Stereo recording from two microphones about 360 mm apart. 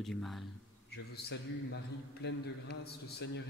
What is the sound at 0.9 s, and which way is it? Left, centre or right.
Speech, left.